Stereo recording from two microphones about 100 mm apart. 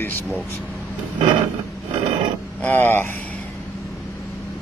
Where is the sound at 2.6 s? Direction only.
20° left (ahead or behind).